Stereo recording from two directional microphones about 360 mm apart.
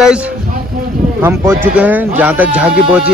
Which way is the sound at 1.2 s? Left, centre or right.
Centre.